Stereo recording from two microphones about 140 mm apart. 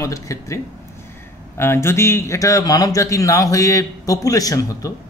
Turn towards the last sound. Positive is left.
turn(degrees=25)  # may be behind; listen again after turning